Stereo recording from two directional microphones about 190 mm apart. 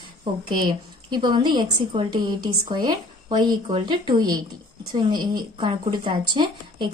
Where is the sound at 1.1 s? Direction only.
25° right (ahead or behind).